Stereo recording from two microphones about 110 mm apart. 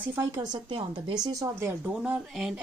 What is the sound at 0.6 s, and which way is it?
Speech, 45° right (ahead or behind).